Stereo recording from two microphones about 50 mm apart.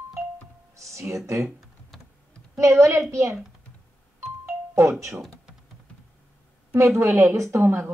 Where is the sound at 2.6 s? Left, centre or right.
Right.